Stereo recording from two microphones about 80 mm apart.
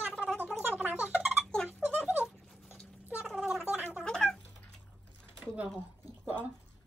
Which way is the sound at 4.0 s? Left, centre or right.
Centre.